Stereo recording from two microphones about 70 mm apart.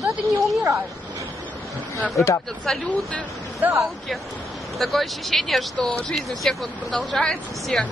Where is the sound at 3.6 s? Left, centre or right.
Right.